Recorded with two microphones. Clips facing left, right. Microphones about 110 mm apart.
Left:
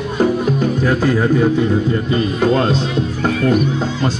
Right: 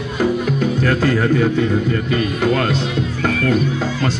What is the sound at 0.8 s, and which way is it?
Speech, 10° left (ahead or behind).